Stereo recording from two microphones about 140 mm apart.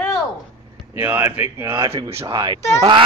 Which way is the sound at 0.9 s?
15° right (ahead or behind).